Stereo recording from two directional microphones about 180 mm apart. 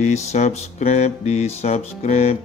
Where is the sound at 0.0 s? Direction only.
40° left (ahead or behind).